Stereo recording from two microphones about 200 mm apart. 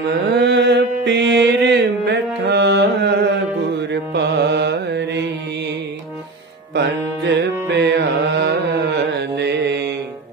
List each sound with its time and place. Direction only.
0.1 s mantra: 55° right (ahead or behind)
3.9 s music: 60° right (ahead or behind)
6.7 s music: 60° right (ahead or behind)